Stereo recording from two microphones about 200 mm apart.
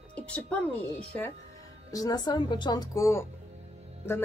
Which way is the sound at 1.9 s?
20° left (ahead or behind).